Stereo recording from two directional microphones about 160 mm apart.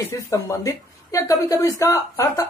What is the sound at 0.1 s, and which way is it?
A woman's voice, 20° left (ahead or behind).